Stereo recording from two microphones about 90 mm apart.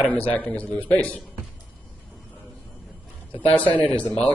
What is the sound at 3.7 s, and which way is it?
Speech, 15° left (ahead or behind).